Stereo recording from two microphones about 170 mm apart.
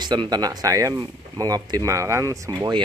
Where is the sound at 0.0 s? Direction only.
25° right (ahead or behind).